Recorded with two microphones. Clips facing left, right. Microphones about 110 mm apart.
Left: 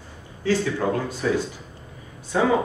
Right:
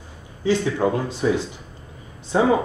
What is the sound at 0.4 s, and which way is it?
Speech, 20° right (ahead or behind).